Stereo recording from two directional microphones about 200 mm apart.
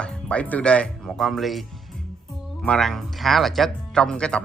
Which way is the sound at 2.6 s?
5° left (ahead or behind).